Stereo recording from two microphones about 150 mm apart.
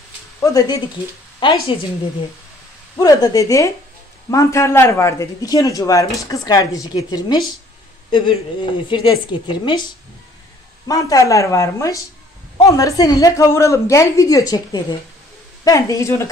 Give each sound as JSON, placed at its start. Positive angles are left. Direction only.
{"t": 0.4, "sound": "a man's voice", "side_deg": 25}
{"t": 1.4, "sound": "speech", "side_deg": 35}
{"t": 3.0, "sound": "a man's voice", "side_deg": 25}
{"t": 10.9, "sound": "a man's voice", "side_deg": 25}